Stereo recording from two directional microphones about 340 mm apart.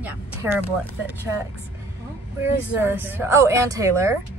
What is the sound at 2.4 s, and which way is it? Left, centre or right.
Speech, centre.